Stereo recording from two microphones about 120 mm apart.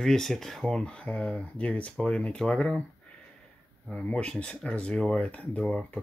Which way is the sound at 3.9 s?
10° left (ahead or behind).